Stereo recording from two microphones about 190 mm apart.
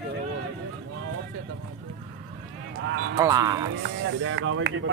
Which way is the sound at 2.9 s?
85° right.